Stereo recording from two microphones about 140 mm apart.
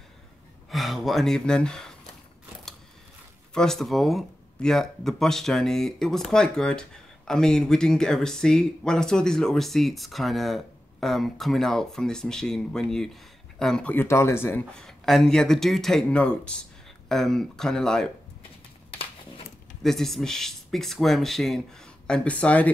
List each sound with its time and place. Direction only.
0.7 s speech: centre (ahead or behind)
3.5 s speech: 5° left (ahead or behind)
14.8 s speech: centre (ahead or behind)
18.9 s a sound: 40° left (ahead or behind)
19.8 s speech: centre (ahead or behind)